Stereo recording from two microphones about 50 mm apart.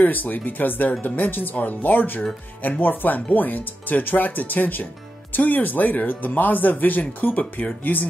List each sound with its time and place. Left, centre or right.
0.0 s speech: left